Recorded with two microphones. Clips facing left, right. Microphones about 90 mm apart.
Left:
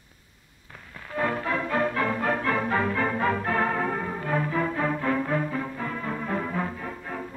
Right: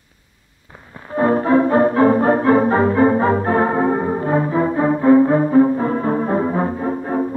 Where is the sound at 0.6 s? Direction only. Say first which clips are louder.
Right 7 dB; 25° right (ahead or behind).